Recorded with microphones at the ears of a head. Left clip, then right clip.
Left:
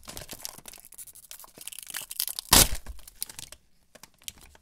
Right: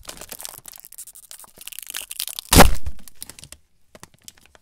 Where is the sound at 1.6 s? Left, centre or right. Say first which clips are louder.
Right 6 dB; right.